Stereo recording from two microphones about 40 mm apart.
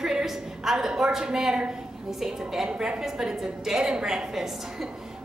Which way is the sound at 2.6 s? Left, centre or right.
Right.